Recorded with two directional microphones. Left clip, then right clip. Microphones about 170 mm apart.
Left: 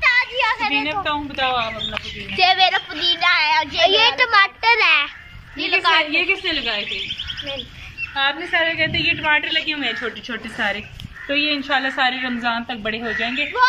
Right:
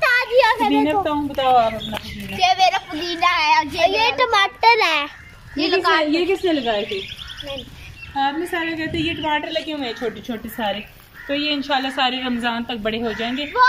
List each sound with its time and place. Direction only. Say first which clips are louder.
0.0 s children playing: right 2 dB; 90° right; by 1.7 s 35° right (ahead or behind)
2.3 s a woman's voice: left 1 dB; 15° right (ahead or behind)
4.0 s a woman's voice: left 2 dB; 20° right (ahead or behind)
5.6 s a woman's voice: left 1 dB; 10° right (ahead or behind)
6.1 s a woman's voice: even; 40° right (ahead or behind)
8.5 s a woman's voice: left 5 dB; 30° right (ahead or behind)
11.2 s a woman's voice: left 2 dB; 10° right (ahead or behind)